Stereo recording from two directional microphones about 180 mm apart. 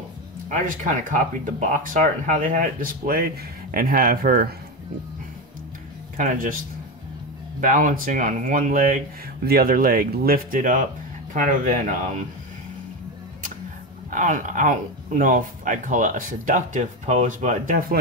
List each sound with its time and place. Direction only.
0.5 s speech: 45° right (ahead or behind)
6.1 s speech: 45° right (ahead or behind)
7.6 s speech: 50° right (ahead or behind)
14.1 s speech: 45° right (ahead or behind)